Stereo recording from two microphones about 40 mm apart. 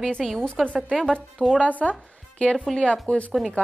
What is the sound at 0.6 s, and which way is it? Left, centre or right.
Speech, centre.